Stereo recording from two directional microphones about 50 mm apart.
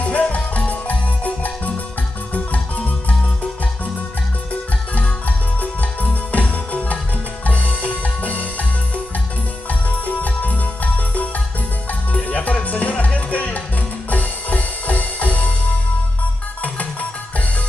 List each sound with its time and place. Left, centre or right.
0.0 s music: left
5.6 s music: left
9.7 s music: left